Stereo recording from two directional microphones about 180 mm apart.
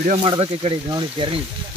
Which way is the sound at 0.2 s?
30° right (ahead or behind).